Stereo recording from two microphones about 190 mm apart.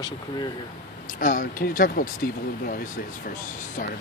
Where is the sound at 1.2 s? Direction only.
45° left (ahead or behind).